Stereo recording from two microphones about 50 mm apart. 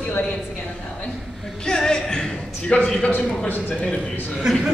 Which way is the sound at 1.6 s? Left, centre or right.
Centre.